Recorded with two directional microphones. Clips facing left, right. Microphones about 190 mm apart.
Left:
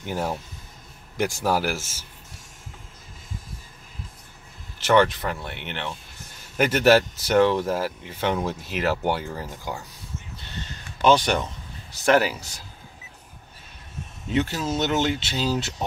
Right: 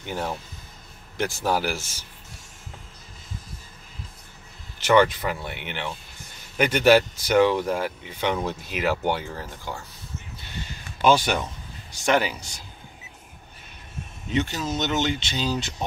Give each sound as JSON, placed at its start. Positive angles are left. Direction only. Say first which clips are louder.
{"t": 0.0, "sound": "speech", "louder": "left 2 dB", "side_deg": 5}
{"t": 4.7, "sound": "speech", "louder": "even", "side_deg": 0}
{"t": 10.6, "sound": "a sound", "louder": "even", "side_deg": -10}
{"t": 11.9, "sound": "speech", "louder": "left 3 dB", "side_deg": 5}
{"t": 14.3, "sound": "speech", "louder": "left 1 dB", "side_deg": 5}